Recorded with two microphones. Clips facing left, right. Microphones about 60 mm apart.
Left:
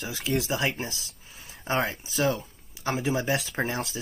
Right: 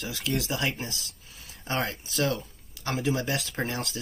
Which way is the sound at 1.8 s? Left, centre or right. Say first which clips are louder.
Left 1 dB; centre.